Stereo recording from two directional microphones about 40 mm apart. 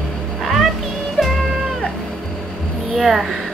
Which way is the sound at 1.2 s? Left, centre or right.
Centre.